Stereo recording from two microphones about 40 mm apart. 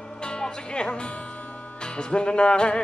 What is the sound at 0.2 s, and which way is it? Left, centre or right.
Speech, left.